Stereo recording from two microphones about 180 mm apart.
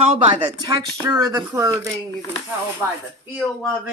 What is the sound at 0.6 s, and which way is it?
Speech, 20° right (ahead or behind).